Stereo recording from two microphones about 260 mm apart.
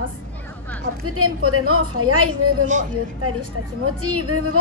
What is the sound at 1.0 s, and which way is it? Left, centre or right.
A woman's voice, right.